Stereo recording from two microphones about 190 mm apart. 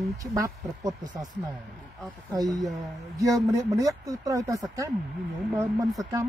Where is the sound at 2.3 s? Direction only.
20° right (ahead or behind).